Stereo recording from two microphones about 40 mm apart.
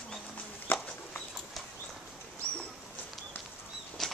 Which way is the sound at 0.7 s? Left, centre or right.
Left.